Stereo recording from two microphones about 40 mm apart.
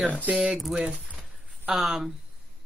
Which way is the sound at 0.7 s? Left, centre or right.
Right.